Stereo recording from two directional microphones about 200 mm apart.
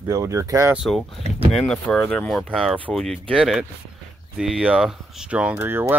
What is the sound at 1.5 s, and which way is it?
Speech, centre (ahead or behind).